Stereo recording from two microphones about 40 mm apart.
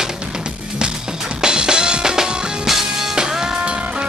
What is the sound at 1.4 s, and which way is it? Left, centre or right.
Music, right.